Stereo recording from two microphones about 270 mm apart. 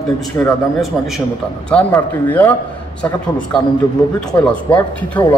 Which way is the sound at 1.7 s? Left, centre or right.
Centre.